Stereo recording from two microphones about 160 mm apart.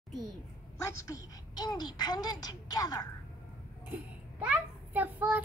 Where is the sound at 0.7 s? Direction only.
20° left (ahead or behind).